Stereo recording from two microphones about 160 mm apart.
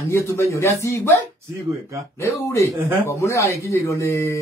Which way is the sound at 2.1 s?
15° left (ahead or behind).